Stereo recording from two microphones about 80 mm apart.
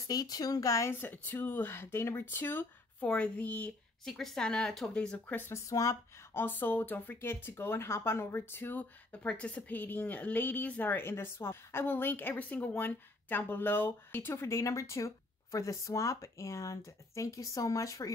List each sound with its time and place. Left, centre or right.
0.1 s speech: left
0.9 s speech: left
4.0 s speech: centre
5.5 s speech: left
6.3 s speech: left